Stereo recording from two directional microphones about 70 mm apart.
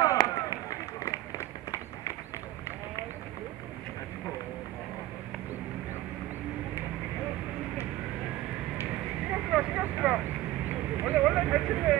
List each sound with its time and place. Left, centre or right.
0.0 s run: left
9.3 s vehicle: centre
11.2 s a sound: centre